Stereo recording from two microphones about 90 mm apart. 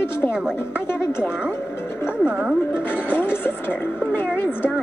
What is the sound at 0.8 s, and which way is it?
Speech, 30° left (ahead or behind).